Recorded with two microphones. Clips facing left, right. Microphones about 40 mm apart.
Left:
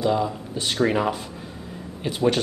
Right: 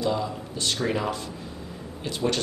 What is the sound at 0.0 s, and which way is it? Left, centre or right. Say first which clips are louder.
Speech: left 4 dB; centre.